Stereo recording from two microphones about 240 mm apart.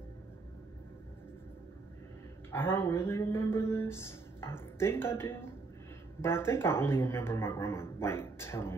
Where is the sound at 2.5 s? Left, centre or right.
Centre.